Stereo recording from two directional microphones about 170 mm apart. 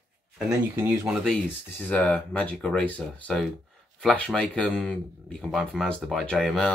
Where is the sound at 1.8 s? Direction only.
10° left (ahead or behind).